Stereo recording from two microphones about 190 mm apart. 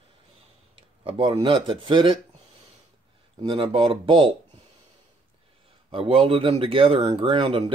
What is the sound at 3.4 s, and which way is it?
Speech, 30° right (ahead or behind).